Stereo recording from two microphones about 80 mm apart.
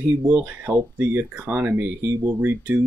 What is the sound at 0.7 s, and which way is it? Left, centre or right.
Speech, right.